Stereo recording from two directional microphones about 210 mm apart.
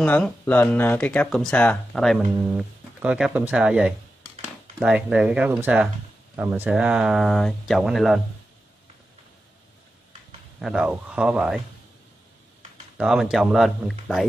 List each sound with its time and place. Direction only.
0.0 s speech: 5° left (ahead or behind)
10.6 s speech: 5° right (ahead or behind)
12.9 s speech: centre (ahead or behind)